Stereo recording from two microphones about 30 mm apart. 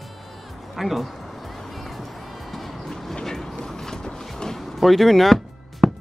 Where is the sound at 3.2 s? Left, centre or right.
Centre.